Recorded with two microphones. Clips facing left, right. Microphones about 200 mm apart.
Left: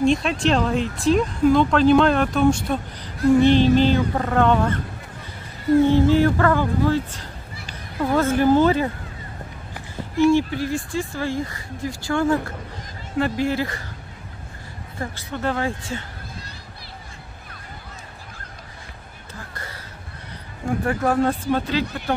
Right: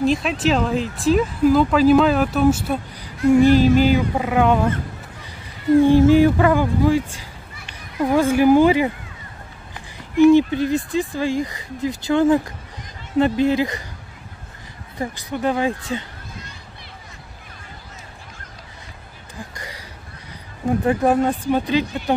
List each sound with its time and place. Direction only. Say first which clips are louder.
0.0 s speech: even; centre (ahead or behind)
5.9 s speech: right 4 dB; 15° right (ahead or behind)
10.1 s speech: right 5 dB; 15° right (ahead or behind)
15.0 s speech: right 4 dB; 15° right (ahead or behind)
19.5 s a sound: right 1 dB; 15° right (ahead or behind)
20.8 s speech: right 2 dB; 20° right (ahead or behind)